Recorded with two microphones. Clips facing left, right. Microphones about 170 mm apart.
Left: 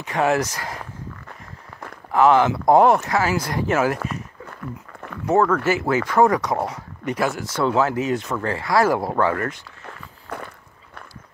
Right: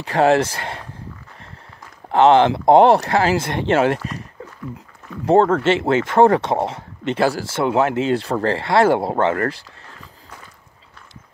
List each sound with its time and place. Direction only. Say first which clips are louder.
0.0 s speech: right 5 dB; 30° right (ahead or behind)
2.1 s speech: right 3 dB; 30° right (ahead or behind)
4.5 s a sound: right 1 dB; 60° left (ahead or behind)
5.2 s speech: right 4 dB; 30° right (ahead or behind)